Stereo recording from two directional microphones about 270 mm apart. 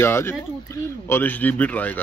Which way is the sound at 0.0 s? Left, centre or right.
Centre.